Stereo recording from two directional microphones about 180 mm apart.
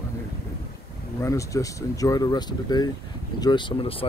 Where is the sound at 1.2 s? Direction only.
15° left (ahead or behind).